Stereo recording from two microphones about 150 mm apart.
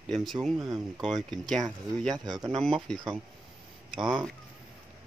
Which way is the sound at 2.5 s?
Centre (ahead or behind).